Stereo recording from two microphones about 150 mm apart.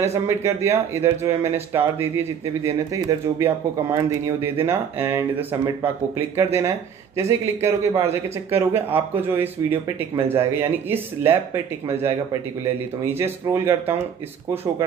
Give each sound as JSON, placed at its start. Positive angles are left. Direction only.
{"t": 0.1, "sound": "speech", "side_deg": -20}